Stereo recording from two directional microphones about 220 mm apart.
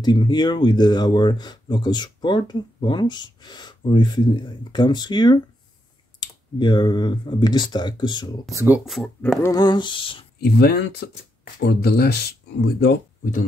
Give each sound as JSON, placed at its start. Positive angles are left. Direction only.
{"t": 0.0, "sound": "speech", "side_deg": 20}
{"t": 8.5, "sound": "speech", "side_deg": -5}
{"t": 10.4, "sound": "speech", "side_deg": 45}